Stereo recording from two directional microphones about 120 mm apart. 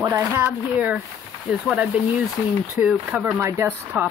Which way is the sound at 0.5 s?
5° right (ahead or behind).